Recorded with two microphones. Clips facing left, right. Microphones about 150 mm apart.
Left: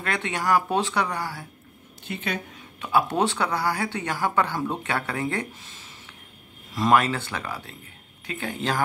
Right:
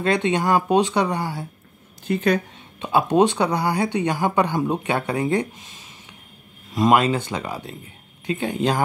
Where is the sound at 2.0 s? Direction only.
40° right (ahead or behind).